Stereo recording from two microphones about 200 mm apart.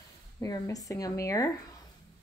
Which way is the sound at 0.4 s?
15° left (ahead or behind).